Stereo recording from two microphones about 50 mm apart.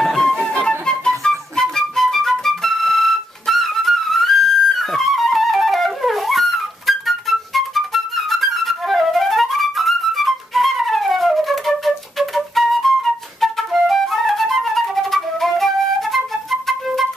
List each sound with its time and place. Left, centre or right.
0.0 s music: centre
0.6 s flute: centre
1.6 s music: centre
16.6 s flute: centre